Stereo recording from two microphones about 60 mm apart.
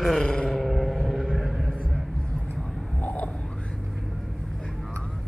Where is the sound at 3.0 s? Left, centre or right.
Left.